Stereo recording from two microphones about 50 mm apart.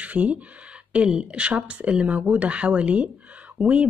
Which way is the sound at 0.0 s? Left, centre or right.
Right.